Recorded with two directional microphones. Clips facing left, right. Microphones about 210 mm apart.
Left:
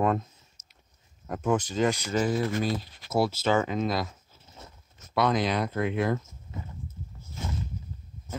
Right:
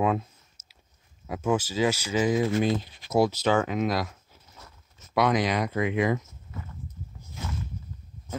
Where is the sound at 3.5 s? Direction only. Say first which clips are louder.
Right 1 dB; 5° right (ahead or behind).